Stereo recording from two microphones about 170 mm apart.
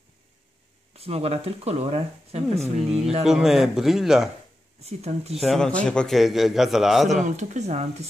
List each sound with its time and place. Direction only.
0.9 s speech: 35° right (ahead or behind)
2.6 s a man's voice: centre (ahead or behind)
4.8 s speech: 40° right (ahead or behind)
5.3 s a man's voice: centre (ahead or behind)
7.2 s speech: 45° right (ahead or behind)